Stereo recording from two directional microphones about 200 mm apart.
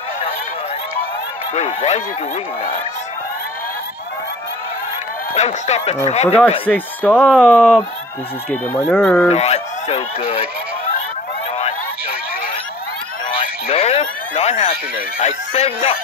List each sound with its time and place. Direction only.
1.5 s speech: 35° left (ahead or behind)
5.3 s speech: 35° left (ahead or behind)
7.1 s speech: 5° right (ahead or behind)
9.3 s speech: 35° left (ahead or behind)
13.4 s speech: 30° left (ahead or behind)